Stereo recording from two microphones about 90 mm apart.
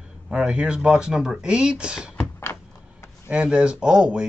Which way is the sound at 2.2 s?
30° left (ahead or behind).